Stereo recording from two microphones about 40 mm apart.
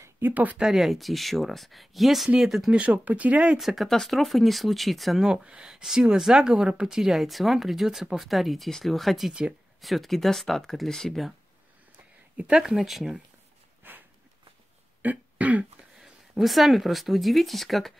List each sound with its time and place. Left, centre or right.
0.3 s speech: right
0.7 s speech: centre
2.7 s speech: right
3.5 s speech: centre
5.2 s speech: right
7.0 s speech: centre
12.6 s speech: centre
13.8 s a sound: right
15.0 s beatboxing: right
16.0 s speech: centre